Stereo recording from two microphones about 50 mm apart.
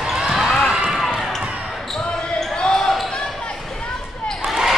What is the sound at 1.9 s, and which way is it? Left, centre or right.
Basketball bounce, centre.